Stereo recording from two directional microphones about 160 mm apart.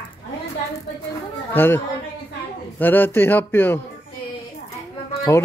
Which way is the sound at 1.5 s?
15° left (ahead or behind).